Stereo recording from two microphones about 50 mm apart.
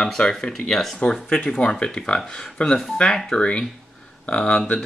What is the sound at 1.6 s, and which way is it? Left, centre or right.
Speech, centre.